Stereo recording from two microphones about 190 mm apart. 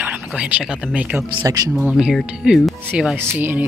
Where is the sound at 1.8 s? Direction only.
5° right (ahead or behind).